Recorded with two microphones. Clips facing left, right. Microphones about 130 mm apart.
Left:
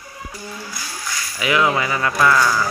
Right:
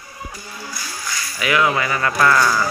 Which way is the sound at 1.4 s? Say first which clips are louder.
Even; 20° left (ahead or behind).